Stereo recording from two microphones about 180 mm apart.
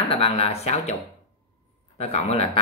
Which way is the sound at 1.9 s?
35° left (ahead or behind).